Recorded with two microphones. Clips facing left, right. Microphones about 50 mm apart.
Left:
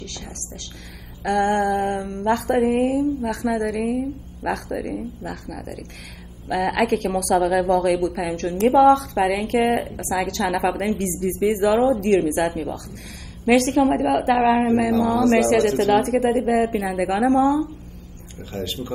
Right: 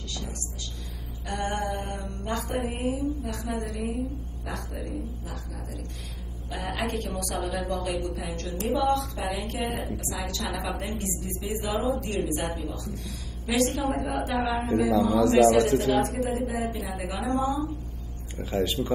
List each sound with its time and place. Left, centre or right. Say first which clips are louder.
1.2 s mantra: left 11 dB; left
6.5 s a woman's voice: left 11 dB; left
13.5 s a woman's voice: left 9 dB; left
16.0 s a woman's voice: left 7 dB; left
18.4 s speech: right 3 dB; centre